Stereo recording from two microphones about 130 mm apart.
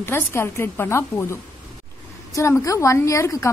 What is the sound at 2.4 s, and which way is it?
A woman's voice, 25° left (ahead or behind).